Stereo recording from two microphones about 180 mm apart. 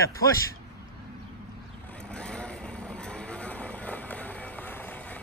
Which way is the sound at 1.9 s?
5° left (ahead or behind).